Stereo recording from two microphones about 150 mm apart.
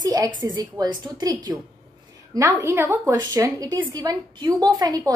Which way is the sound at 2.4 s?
20° right (ahead or behind).